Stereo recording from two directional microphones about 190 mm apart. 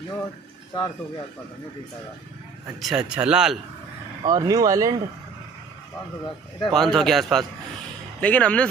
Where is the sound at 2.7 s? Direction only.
5° right (ahead or behind).